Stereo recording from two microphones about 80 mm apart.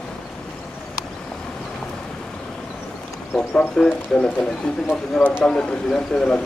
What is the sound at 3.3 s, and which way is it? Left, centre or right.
Speech, centre.